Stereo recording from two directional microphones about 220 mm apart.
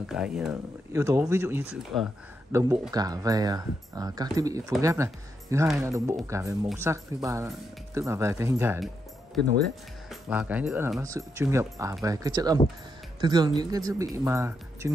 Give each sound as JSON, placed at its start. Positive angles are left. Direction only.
{"t": 0.0, "sound": "speech", "side_deg": -5}
{"t": 8.7, "sound": "speech", "side_deg": 0}